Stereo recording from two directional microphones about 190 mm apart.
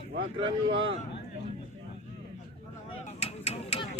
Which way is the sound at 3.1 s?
35° left (ahead or behind).